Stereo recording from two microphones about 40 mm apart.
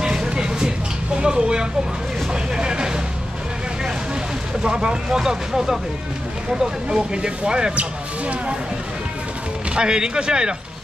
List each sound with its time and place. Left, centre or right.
0.0 s a sound: centre
2.5 s vehicle: right
4.6 s speech: right
9.8 s speech: right